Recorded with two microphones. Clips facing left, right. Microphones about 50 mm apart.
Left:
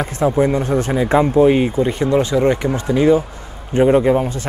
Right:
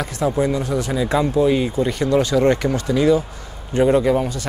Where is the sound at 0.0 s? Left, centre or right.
Left.